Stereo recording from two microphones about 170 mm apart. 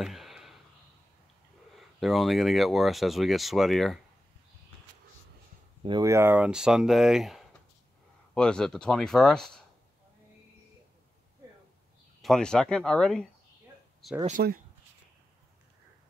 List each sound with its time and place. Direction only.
0.0 s a sound: centre (ahead or behind)
1.8 s speech: centre (ahead or behind)
5.8 s a sound: 30° right (ahead or behind)
6.0 s speech: 15° right (ahead or behind); by 9.6 s 5° left (ahead or behind)
12.2 s speech: 5° left (ahead or behind)
14.4 s speech: 65° right (ahead or behind)